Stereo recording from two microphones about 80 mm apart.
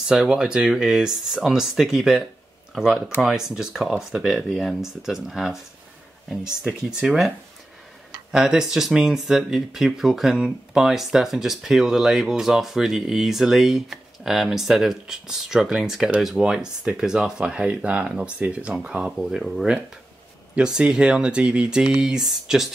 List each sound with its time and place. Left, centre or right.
0.0 s speech: centre
6.9 s speech: centre